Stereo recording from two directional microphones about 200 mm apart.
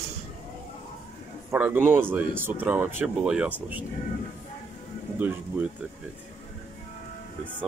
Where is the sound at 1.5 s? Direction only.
10° right (ahead or behind).